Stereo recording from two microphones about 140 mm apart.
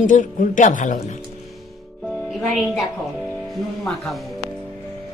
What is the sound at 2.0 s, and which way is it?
Music, centre (ahead or behind).